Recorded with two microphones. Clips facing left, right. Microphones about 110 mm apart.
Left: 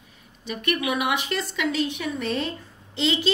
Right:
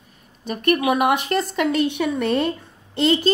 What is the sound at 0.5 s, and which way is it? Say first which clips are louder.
Speech: right 7 dB; 45° right (ahead or behind).